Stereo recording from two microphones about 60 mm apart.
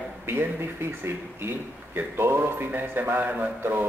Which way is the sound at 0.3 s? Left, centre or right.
Right.